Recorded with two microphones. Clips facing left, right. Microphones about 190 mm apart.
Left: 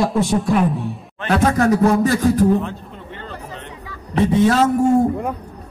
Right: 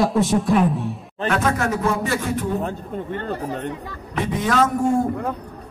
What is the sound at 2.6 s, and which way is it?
Speech, 45° right (ahead or behind).